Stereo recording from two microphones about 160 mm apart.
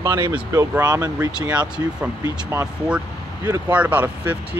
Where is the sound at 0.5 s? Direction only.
20° right (ahead or behind).